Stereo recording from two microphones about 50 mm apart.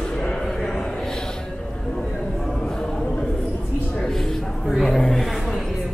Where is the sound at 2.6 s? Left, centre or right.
Centre.